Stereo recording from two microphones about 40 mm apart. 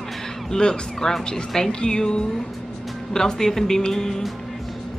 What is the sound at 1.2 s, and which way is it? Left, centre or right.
Speech, centre.